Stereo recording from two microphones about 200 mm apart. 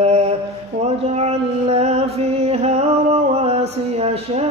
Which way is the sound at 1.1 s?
30° right (ahead or behind).